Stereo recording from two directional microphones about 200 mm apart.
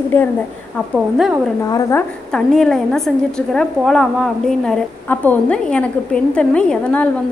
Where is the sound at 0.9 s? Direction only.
5° right (ahead or behind).